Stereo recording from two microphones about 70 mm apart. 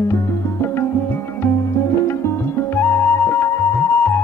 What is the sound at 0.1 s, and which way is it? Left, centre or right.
Music, left.